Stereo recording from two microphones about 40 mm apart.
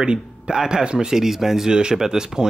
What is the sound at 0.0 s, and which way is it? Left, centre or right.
A man's voice, right.